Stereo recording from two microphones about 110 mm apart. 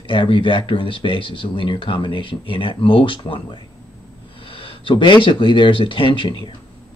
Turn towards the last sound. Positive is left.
turn(degrees=50)  # may be behind; listen again after turning